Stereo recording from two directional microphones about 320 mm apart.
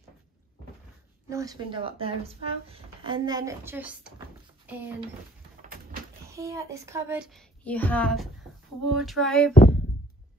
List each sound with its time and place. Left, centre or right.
1.3 s speech: centre
5.6 s a sound: right
6.3 s a child's voice: centre
9.5 s speech: left